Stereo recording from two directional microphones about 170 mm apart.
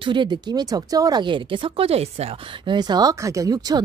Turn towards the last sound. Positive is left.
turn(degrees=-20)  # may be behind; listen again after turning